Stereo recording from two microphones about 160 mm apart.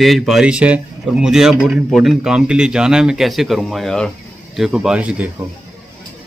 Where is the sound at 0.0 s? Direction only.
Centre (ahead or behind).